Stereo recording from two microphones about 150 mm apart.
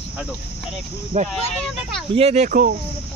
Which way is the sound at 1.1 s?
50° right (ahead or behind).